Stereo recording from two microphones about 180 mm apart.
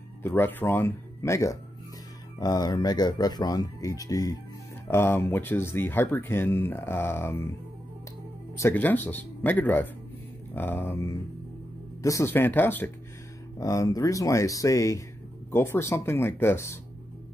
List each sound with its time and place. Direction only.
0.2 s speech: 10° left (ahead or behind)
8.5 s speech: 10° left (ahead or behind)